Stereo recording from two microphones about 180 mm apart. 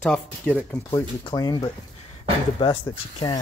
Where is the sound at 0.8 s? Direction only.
20° left (ahead or behind).